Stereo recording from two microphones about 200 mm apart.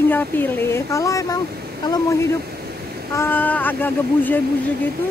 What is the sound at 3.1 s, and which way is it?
Speech, 10° left (ahead or behind).